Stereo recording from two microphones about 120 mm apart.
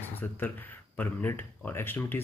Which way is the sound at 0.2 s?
15° left (ahead or behind).